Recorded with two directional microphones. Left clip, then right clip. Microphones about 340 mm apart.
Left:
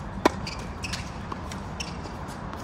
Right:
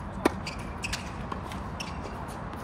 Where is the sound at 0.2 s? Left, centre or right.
Centre.